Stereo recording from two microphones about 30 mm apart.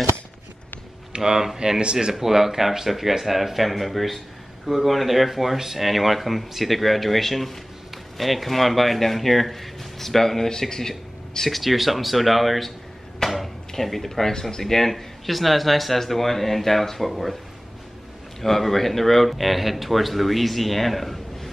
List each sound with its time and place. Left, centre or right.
1.1 s speech: centre
2.1 s speech: centre
11.5 s speech: centre
13.2 s a sound: centre
13.8 s speech: centre
18.4 s speech: centre